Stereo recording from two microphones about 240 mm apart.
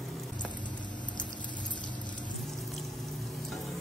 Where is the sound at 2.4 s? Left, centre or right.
Centre.